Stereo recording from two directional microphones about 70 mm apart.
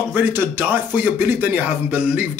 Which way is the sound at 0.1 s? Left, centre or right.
Right.